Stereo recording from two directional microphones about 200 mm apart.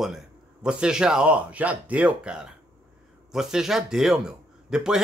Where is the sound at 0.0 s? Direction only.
5° right (ahead or behind).